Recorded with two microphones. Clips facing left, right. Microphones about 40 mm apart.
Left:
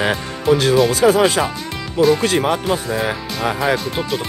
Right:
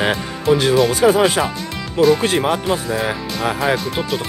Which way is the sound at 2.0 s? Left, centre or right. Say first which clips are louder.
Right 1 dB; right.